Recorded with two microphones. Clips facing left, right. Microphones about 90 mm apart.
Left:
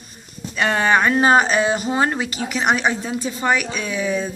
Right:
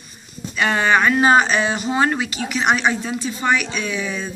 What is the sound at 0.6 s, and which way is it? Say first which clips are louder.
A woman's voice: even; 40° left (ahead or behind).